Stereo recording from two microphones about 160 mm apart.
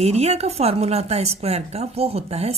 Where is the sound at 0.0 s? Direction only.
40° right (ahead or behind).